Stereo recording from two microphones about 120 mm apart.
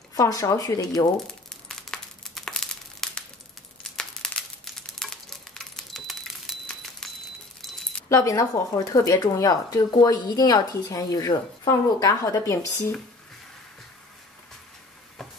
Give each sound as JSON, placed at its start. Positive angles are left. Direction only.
{"t": 0.1, "sound": "speech", "side_deg": 30}
{"t": 1.1, "sound": "crumpling", "side_deg": 5}
{"t": 8.1, "sound": "speech", "side_deg": 25}